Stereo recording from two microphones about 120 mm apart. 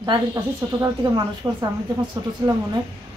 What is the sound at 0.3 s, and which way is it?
Speech, 30° right (ahead or behind).